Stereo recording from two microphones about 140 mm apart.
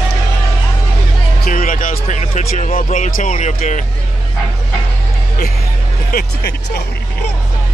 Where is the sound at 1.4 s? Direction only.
75° left (ahead or behind).